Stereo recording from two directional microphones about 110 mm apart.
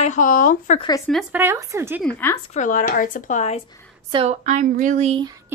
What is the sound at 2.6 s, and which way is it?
Speech, 90° left.